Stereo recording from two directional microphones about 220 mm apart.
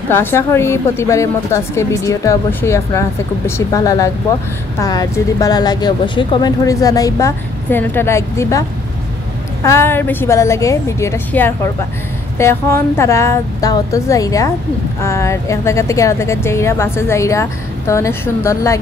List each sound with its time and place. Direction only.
0.1 s a woman's voice: 10° left (ahead or behind)